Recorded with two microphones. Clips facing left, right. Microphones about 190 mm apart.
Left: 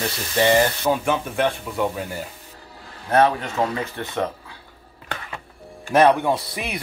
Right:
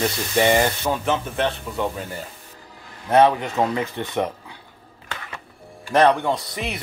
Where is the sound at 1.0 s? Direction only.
10° left (ahead or behind).